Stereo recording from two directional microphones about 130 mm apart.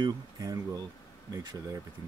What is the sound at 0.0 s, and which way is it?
Speech, 30° right (ahead or behind).